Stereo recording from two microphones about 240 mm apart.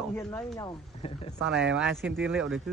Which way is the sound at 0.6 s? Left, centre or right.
Left.